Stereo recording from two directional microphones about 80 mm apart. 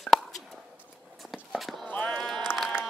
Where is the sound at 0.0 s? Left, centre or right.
Centre.